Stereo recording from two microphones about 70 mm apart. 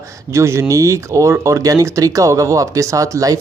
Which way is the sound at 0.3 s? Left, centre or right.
Right.